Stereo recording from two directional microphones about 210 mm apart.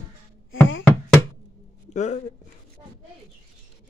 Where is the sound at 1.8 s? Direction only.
35° left (ahead or behind).